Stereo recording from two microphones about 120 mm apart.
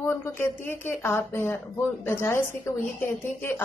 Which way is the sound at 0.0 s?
20° left (ahead or behind).